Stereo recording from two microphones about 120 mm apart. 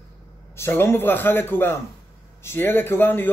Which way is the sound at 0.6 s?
20° left (ahead or behind).